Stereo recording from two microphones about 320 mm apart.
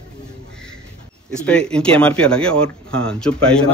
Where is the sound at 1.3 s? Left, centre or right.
Centre.